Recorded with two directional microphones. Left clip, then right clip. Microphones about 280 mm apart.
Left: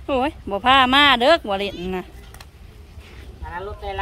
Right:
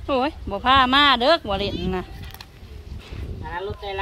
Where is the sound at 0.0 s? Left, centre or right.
Centre.